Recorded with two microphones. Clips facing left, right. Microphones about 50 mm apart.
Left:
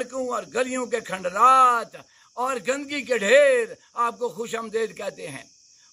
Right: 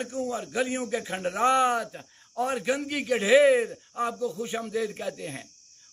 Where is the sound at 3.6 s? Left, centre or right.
Centre.